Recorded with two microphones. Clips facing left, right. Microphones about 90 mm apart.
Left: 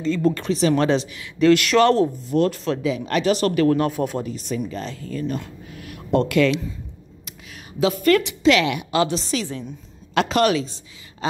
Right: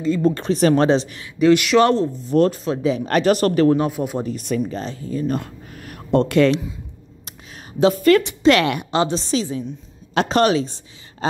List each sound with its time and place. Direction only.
0.2 s a woman's voice: 25° right (ahead or behind)
0.5 s speech: 50° right (ahead or behind)
0.7 s a woman's voice: 30° right (ahead or behind)
1.4 s speech: 15° right (ahead or behind)
2.2 s a woman's voice: 35° right (ahead or behind)
2.5 s a woman's voice: 20° right (ahead or behind)
2.8 s a woman's voice: 40° right (ahead or behind)
3.6 s a woman's voice: 20° right (ahead or behind)
3.9 s speech: 5° right (ahead or behind)
4.3 s speech: 60° right (ahead or behind)
4.7 s a woman's voice: 25° right (ahead or behind)
5.2 s speech: 45° right (ahead or behind)
7.8 s a woman's voice: 35° right (ahead or behind)
8.9 s a woman's voice: 25° right (ahead or behind)